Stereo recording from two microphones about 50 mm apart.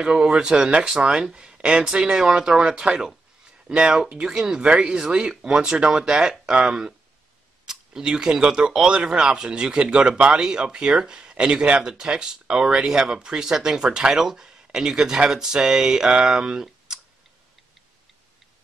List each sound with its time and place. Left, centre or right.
0.0 s speech: centre